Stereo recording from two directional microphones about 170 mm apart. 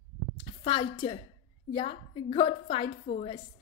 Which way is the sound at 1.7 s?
35° left (ahead or behind).